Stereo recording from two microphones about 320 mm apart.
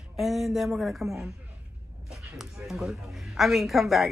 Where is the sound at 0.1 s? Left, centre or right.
Centre.